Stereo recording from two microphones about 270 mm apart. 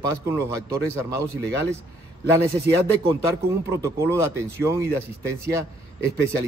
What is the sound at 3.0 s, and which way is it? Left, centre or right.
Speech, centre.